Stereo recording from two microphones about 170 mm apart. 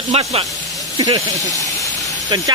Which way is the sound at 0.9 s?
25° right (ahead or behind).